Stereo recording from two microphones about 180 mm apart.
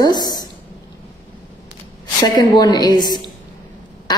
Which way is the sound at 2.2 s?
25° left (ahead or behind).